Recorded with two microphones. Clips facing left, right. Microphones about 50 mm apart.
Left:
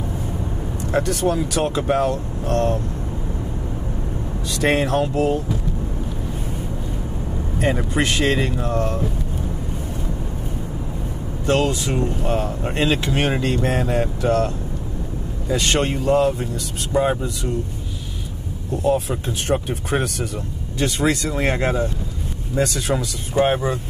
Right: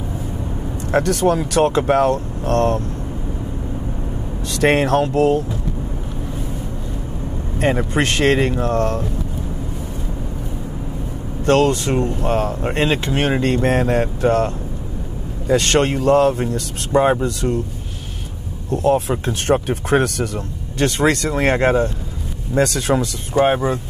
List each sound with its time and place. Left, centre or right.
0.9 s speech: right
4.6 s speech: right
7.9 s speech: right
11.4 s speech: right
11.9 s speech: right
15.5 s speech: right
17.2 s speech: right
18.7 s speech: right
22.6 s speech: right
23.4 s speech: centre